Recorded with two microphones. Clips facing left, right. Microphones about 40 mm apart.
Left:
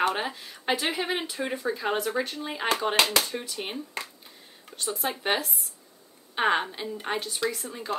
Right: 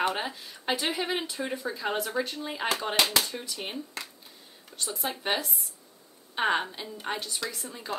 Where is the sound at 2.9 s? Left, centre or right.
Left.